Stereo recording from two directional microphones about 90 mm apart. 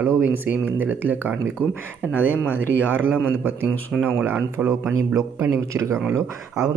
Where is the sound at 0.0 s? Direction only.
25° right (ahead or behind).